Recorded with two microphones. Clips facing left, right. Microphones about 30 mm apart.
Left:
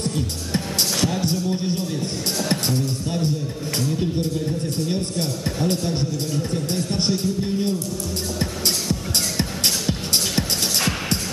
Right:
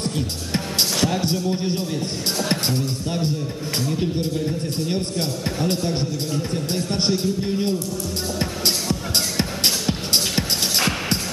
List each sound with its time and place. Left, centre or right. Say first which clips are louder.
0.0 s music: even; centre
1.0 s a man's voice: right 1 dB; centre
8.4 s music: right 1 dB; centre